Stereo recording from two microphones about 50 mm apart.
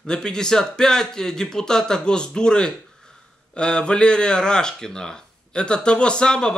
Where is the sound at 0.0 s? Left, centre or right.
Centre.